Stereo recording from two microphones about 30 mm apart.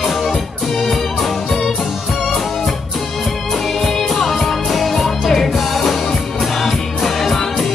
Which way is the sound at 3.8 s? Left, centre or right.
Centre.